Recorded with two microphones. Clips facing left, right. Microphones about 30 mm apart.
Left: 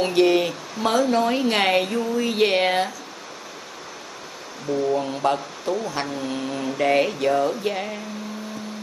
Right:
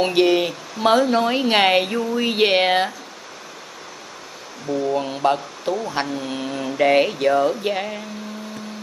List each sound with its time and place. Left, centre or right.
0.0 s speech: right
0.3 s speech: centre
0.8 s speech: right
4.9 s speech: centre